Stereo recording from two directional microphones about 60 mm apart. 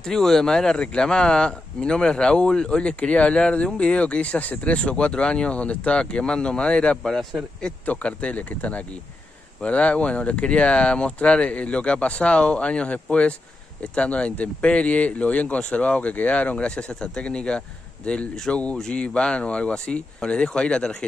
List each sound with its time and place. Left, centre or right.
0.0 s speech: centre
7.0 s speech: centre
7.8 s speech: left